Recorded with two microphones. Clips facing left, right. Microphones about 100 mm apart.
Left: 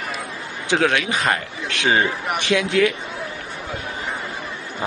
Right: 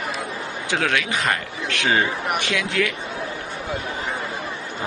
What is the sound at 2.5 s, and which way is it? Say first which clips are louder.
Speech: left 10 dB; 30° left (ahead or behind).